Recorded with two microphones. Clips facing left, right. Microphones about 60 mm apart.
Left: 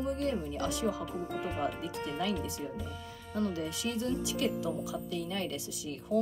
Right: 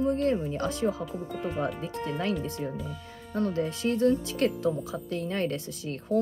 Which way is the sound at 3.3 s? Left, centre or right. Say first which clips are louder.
Right 5 dB; right.